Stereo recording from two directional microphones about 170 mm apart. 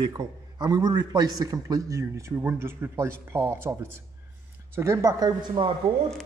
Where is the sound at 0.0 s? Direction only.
25° right (ahead or behind).